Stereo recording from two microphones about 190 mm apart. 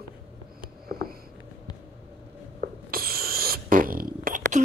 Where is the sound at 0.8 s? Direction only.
50° right (ahead or behind).